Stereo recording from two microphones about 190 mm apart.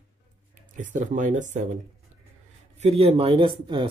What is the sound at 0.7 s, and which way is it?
Speech, 40° right (ahead or behind).